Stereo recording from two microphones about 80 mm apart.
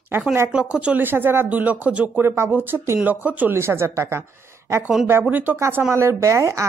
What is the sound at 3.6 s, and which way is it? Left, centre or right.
Speech, right.